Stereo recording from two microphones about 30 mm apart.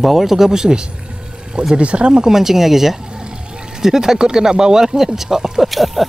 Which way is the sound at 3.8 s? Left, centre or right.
Centre.